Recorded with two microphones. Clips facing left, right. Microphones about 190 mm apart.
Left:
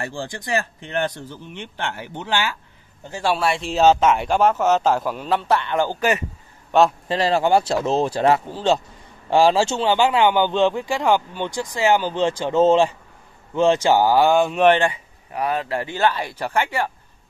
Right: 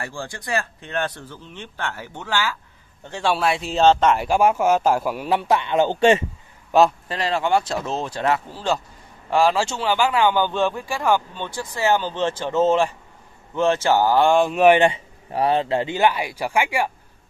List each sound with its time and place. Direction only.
0.0 s a man's voice: 20° left (ahead or behind)
3.1 s speech: 5° left (ahead or behind); by 6.2 s 25° right (ahead or behind)
7.1 s speech: 35° left (ahead or behind)
8.5 s a man's voice: 20° left (ahead or behind); by 14.8 s 5° right (ahead or behind)
14.8 s speech: 25° right (ahead or behind); by 16.9 s 10° right (ahead or behind)